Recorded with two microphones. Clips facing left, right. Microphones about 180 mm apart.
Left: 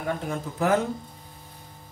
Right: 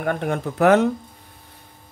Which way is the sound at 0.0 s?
65° right (ahead or behind).